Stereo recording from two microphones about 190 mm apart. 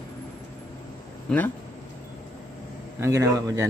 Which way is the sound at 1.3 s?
5° left (ahead or behind).